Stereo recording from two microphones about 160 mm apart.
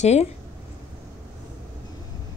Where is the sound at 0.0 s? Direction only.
45° left (ahead or behind).